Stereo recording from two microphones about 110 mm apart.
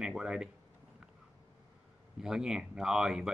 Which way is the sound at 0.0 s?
5° right (ahead or behind).